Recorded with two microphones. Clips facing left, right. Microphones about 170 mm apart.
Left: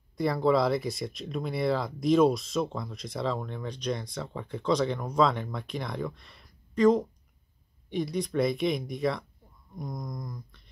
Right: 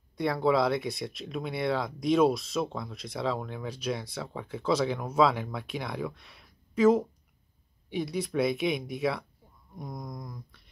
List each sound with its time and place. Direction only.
0.2 s speech: centre (ahead or behind)